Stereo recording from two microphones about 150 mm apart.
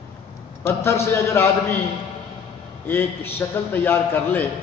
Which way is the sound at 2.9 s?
15° left (ahead or behind).